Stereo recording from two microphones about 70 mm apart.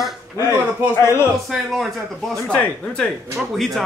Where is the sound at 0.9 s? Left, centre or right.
Left.